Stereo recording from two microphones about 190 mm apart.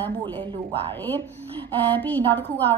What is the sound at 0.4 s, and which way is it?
Speech, 30° right (ahead or behind).